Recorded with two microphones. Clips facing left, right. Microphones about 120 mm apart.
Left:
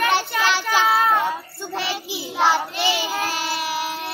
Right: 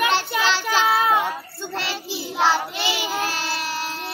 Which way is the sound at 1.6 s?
15° left (ahead or behind).